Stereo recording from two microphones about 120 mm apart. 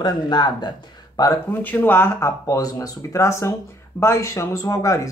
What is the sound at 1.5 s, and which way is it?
Speech, 15° left (ahead or behind).